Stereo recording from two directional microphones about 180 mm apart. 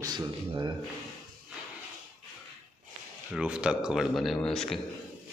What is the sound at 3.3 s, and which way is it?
Speech, 5° right (ahead or behind).